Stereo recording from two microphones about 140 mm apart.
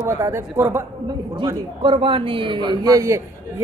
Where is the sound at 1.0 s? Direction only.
35° right (ahead or behind).